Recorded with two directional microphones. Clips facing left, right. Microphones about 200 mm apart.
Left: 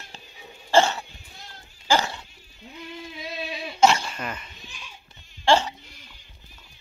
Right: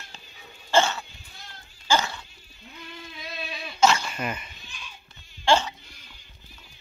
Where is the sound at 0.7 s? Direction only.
35° left (ahead or behind).